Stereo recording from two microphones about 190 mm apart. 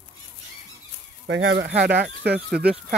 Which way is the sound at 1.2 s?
70° right (ahead or behind).